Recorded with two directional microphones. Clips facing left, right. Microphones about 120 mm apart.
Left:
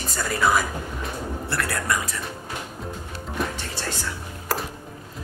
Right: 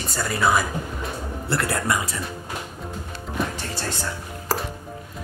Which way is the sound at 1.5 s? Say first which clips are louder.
Right 3 dB; 25° right (ahead or behind).